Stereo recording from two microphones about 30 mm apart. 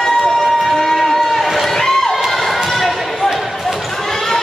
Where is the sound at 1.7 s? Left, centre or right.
Centre.